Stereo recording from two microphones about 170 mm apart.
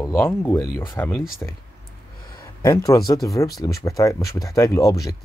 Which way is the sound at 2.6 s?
20° left (ahead or behind).